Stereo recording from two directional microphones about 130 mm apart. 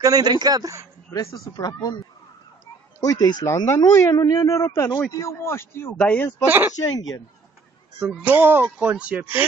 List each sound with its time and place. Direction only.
0.0 s a man's voice: 30° right (ahead or behind)
1.1 s speech: 30° left (ahead or behind)
3.0 s speech: 30° left (ahead or behind); by 6.2 s 10° left (ahead or behind)
6.4 s speech: 15° right (ahead or behind)
8.2 s speech: 15° right (ahead or behind)